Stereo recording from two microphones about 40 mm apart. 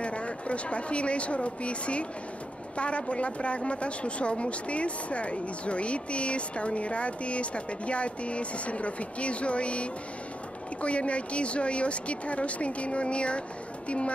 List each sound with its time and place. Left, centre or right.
0.0 s speech: left